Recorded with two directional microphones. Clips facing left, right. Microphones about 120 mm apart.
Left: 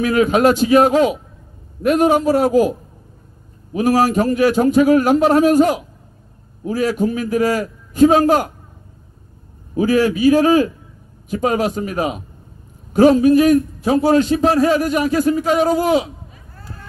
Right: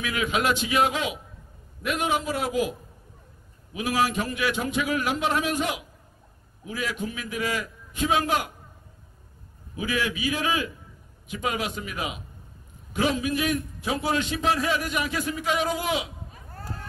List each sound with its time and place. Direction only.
0.0 s a man's voice: 40° left (ahead or behind)
3.7 s a man's voice: 40° left (ahead or behind)
9.8 s a man's voice: 40° left (ahead or behind)